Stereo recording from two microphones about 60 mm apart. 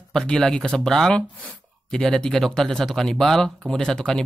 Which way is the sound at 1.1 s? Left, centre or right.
Left.